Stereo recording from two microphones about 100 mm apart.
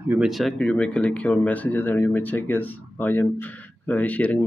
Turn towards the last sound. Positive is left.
turn(degrees=15)  # may be behind; listen again after turning